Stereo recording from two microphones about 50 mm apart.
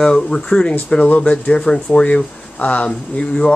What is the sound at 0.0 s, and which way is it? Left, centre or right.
Speech, centre.